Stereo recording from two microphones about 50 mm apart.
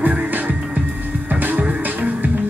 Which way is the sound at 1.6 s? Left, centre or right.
Right.